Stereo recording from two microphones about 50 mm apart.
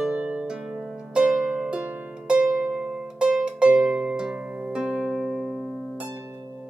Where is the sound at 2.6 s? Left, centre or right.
Centre.